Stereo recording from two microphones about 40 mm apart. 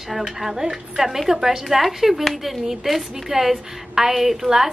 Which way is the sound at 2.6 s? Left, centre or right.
Centre.